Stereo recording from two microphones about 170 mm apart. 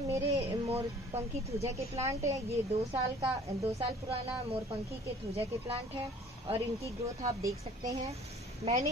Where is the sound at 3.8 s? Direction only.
35° right (ahead or behind).